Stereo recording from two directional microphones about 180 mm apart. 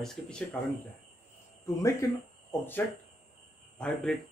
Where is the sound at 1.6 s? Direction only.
15° left (ahead or behind).